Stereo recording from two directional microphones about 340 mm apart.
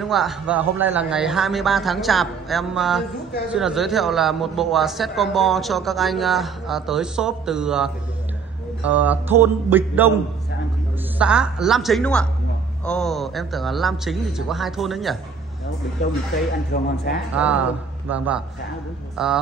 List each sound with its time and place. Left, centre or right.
0.0 s a man's voice: centre
11.1 s a man's voice: centre
16.7 s speech: left
17.4 s a man's voice: centre